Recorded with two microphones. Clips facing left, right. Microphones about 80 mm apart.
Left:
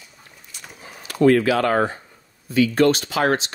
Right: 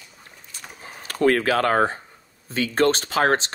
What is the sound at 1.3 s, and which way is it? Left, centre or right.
Speech, right.